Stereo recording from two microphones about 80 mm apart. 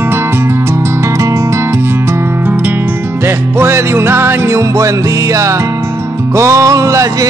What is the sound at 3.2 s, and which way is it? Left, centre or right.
Music, right.